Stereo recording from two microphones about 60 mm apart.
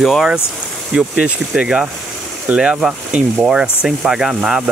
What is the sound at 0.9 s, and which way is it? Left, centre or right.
Speech, centre.